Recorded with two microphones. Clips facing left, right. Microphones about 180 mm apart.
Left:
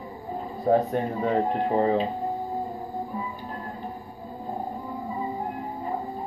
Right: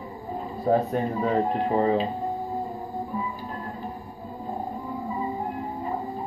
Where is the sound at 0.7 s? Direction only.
40° left (ahead or behind).